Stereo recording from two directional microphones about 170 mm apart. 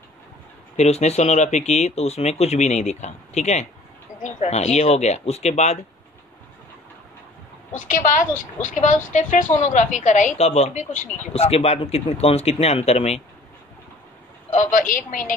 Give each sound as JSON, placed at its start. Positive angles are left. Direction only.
{"t": 0.7, "sound": "a woman's voice", "side_deg": 40}
{"t": 7.7, "sound": "a woman's voice", "side_deg": 50}
{"t": 14.5, "sound": "speech", "side_deg": 45}